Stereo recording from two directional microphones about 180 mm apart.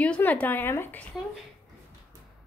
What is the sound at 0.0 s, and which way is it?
A woman's voice, 10° left (ahead or behind).